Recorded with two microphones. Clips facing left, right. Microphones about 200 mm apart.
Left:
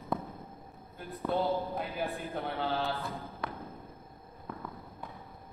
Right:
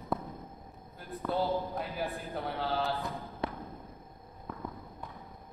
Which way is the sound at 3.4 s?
25° right (ahead or behind).